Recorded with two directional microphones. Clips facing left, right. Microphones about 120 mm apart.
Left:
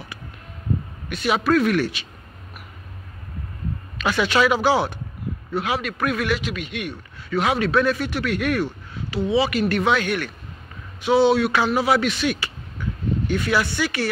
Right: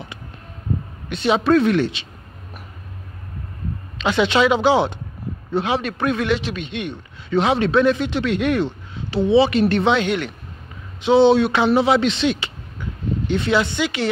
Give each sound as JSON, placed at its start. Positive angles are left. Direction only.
{"t": 1.0, "sound": "a man's voice", "side_deg": -25}
{"t": 4.0, "sound": "a man's voice", "side_deg": -20}